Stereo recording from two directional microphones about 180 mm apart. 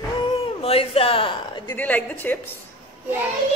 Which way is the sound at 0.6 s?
35° left (ahead or behind).